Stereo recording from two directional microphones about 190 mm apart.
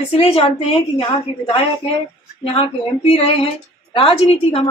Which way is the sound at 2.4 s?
30° left (ahead or behind).